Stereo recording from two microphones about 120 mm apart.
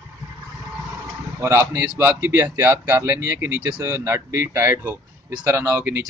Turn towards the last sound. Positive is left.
turn(degrees=-20)  # may be behind; listen again after turning